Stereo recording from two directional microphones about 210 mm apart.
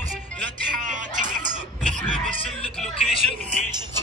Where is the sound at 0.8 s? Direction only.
35° right (ahead or behind).